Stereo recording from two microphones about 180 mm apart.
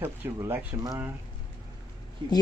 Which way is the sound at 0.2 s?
10° right (ahead or behind).